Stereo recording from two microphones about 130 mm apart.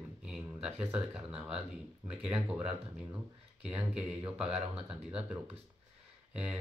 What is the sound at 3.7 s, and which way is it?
Speech, 10° right (ahead or behind).